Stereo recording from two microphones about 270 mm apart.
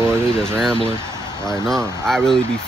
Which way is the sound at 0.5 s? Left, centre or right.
Centre.